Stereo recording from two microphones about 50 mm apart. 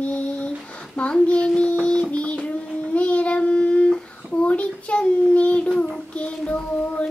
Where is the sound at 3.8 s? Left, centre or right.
Centre.